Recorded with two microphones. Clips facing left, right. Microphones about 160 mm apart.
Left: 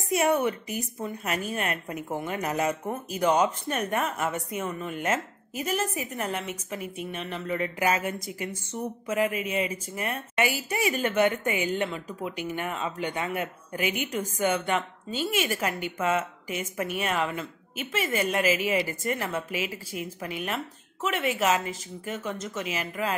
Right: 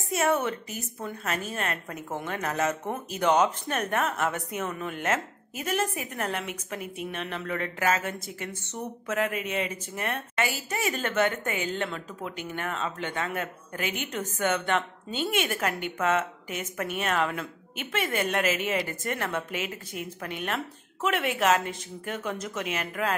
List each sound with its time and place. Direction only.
0.2 s speech: 15° left (ahead or behind)